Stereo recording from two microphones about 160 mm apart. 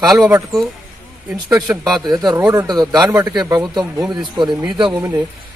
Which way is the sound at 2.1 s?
25° right (ahead or behind).